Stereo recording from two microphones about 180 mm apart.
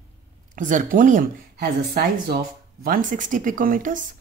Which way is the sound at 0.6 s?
45° right (ahead or behind).